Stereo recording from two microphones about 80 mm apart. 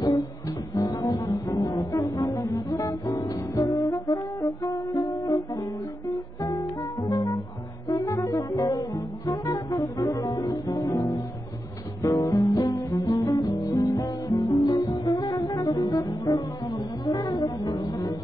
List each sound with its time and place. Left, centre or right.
0.7 s brass instrument: left
6.0 s music: left